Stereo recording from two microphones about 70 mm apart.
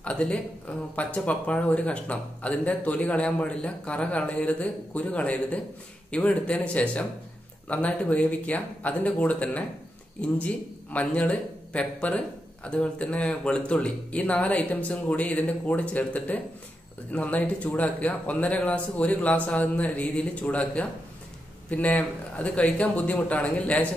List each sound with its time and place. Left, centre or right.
0.0 s a man's voice: centre